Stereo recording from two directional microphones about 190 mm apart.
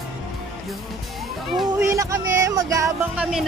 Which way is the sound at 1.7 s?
15° right (ahead or behind).